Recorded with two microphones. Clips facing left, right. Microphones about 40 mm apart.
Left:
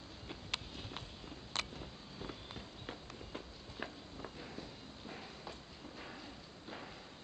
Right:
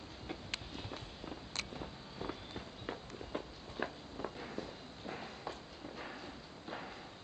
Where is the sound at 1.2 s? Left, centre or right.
Centre.